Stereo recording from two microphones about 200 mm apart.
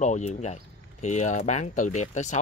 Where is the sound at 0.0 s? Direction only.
35° left (ahead or behind).